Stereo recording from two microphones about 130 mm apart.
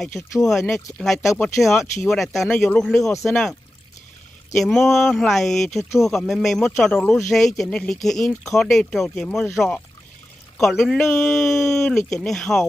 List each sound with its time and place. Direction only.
0.4 s speech: centre (ahead or behind)
4.6 s speech: centre (ahead or behind)
10.6 s speech: centre (ahead or behind)